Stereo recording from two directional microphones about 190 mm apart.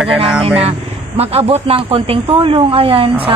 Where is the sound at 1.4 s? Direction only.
30° right (ahead or behind).